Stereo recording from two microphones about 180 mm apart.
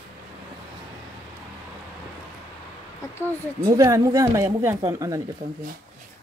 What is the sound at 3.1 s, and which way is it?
Speech, 10° left (ahead or behind).